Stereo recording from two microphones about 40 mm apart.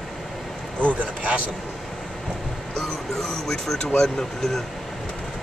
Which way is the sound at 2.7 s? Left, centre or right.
Centre.